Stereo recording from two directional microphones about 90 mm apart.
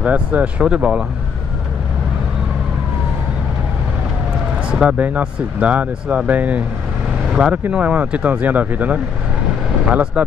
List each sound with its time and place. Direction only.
0.0 s speech: 15° right (ahead or behind)
4.6 s speech: 10° right (ahead or behind)